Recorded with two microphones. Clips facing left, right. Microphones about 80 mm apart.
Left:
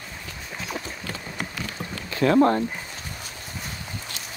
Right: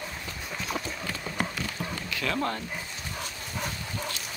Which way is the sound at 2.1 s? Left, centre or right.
Left.